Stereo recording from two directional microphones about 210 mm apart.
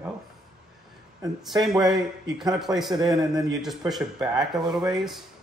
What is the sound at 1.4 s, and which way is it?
Speech, centre (ahead or behind).